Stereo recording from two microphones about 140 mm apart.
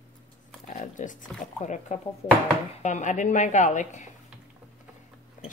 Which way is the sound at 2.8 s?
60° left (ahead or behind).